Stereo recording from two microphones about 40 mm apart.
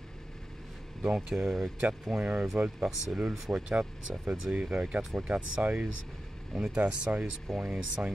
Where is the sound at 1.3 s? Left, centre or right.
Right.